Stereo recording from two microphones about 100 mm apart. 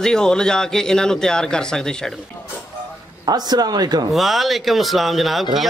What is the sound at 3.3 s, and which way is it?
Speech, 40° right (ahead or behind).